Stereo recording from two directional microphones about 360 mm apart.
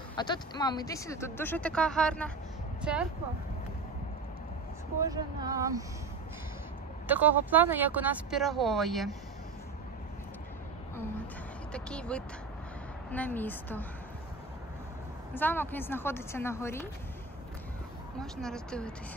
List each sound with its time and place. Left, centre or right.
0.1 s speech: centre
5.0 s speech: centre
7.1 s speech: centre
11.7 s speech: centre
15.3 s speech: centre
18.2 s speech: centre